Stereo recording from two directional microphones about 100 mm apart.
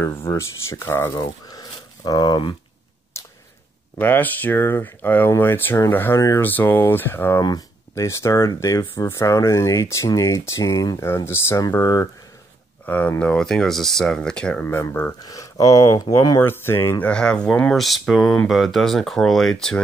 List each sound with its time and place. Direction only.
0.2 s speech: 30° left (ahead or behind)
1.5 s a sound: 40° left (ahead or behind)
4.0 s speech: 20° left (ahead or behind); by 12.1 s 35° left (ahead or behind)
12.8 s speech: 15° left (ahead or behind)
15.2 s speech: 35° left (ahead or behind)
16.3 s speech: 25° left (ahead or behind)
17.1 s speech: 10° left (ahead or behind)